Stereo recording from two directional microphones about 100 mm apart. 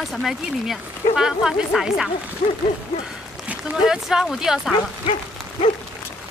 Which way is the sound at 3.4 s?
10° right (ahead or behind).